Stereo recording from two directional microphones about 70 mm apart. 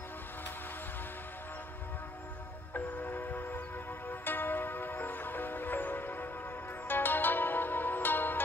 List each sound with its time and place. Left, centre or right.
2.7 s music: left